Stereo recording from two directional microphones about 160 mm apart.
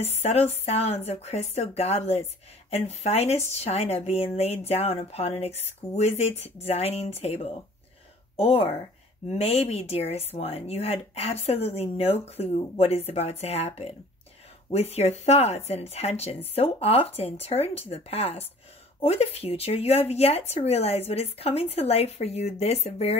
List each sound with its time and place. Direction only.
0.0 s speech: 40° left (ahead or behind)